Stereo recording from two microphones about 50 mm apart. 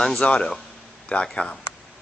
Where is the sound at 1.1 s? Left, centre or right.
Left.